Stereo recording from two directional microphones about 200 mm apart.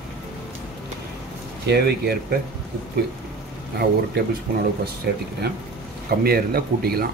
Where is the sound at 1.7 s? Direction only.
55° right (ahead or behind).